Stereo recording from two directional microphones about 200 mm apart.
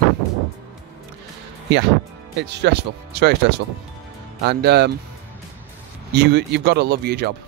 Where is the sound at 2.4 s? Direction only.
60° right (ahead or behind).